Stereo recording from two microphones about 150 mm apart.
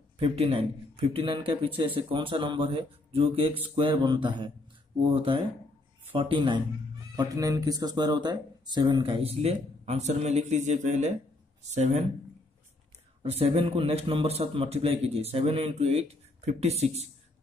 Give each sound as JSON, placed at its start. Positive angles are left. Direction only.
{"t": 0.2, "sound": "a man's voice", "side_deg": -40}
{"t": 7.2, "sound": "a man's voice", "side_deg": -25}
{"t": 13.2, "sound": "a man's voice", "side_deg": -45}